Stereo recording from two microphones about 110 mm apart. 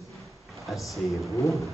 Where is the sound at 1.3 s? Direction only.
30° left (ahead or behind).